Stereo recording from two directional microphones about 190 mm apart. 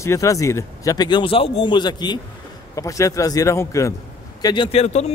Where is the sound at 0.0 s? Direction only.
15° left (ahead or behind).